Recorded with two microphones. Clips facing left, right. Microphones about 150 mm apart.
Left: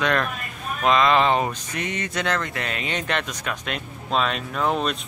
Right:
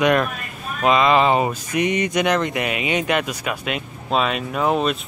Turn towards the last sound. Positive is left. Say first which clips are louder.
# right 4 dB
turn(degrees=-5)  # may be behind; listen again after turning